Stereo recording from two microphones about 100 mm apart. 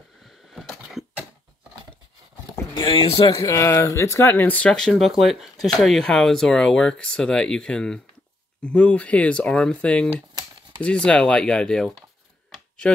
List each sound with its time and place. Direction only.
0.6 s a sound: centre (ahead or behind)
2.7 s speech: 65° left (ahead or behind)
3.3 s speech: 30° left (ahead or behind); by 11.9 s 5° left (ahead or behind)